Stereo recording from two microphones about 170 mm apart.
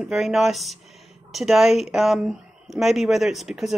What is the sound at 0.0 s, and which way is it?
Speech, centre (ahead or behind).